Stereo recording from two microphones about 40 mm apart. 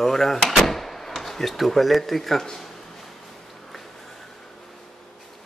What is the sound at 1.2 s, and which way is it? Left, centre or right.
Speech, centre.